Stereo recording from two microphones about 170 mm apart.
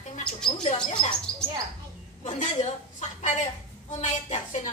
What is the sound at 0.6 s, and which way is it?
Mouse, 45° left (ahead or behind).